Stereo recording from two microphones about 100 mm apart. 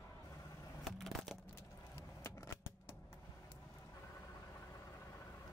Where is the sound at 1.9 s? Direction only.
30° left (ahead or behind).